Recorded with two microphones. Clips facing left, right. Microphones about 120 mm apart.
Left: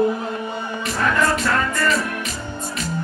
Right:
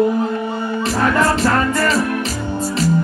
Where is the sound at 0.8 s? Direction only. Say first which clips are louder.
Right 4 dB; 35° right (ahead or behind).